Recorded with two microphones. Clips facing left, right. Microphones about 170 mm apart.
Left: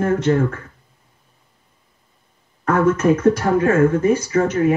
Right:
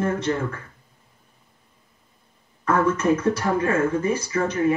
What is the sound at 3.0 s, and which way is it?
Speech, 65° left (ahead or behind).